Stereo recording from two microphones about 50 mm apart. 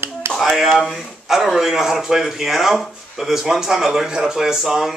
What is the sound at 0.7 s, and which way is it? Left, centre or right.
A man's voice, centre.